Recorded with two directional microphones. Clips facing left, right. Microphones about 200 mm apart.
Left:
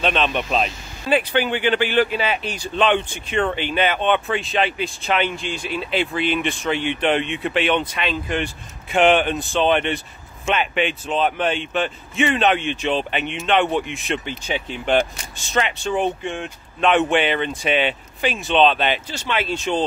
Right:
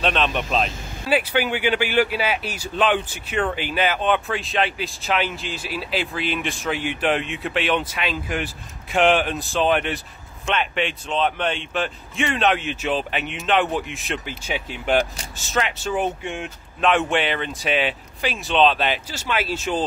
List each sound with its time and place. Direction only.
0.0 s speech: centre (ahead or behind)